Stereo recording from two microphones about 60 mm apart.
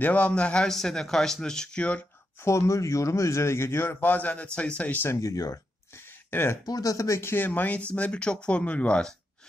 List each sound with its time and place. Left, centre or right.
0.0 s speech: left
2.4 s a man's voice: left
5.2 s speech: left
5.9 s a sound: left
6.6 s speech: left
7.2 s speech: left; by 9.1 s centre